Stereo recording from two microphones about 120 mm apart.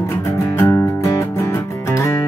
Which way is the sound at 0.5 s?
25° left (ahead or behind).